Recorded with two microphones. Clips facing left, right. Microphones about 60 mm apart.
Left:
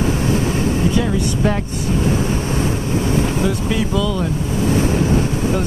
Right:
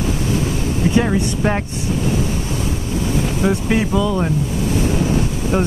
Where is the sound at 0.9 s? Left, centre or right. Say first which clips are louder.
Right 1 dB; right.